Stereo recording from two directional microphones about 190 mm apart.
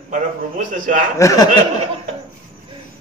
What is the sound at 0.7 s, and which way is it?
Speech, 45° right (ahead or behind).